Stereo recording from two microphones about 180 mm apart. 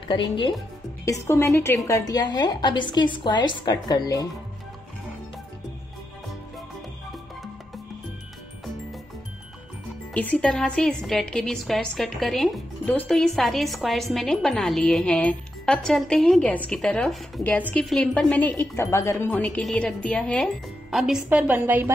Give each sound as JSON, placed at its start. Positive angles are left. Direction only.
{"t": 0.1, "sound": "a woman's voice", "side_deg": 25}
{"t": 10.1, "sound": "a woman's voice", "side_deg": 10}